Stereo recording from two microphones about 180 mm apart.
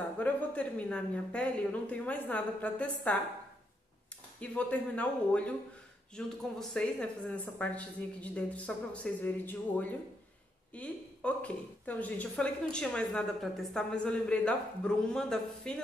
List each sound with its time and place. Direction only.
0.2 s speech: 5° left (ahead or behind)
4.4 s a woman's voice: 5° left (ahead or behind)